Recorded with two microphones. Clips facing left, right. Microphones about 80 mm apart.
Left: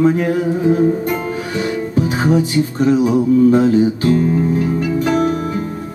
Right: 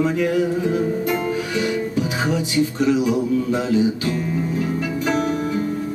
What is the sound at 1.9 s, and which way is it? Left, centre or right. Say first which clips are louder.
Music: left 6 dB; left.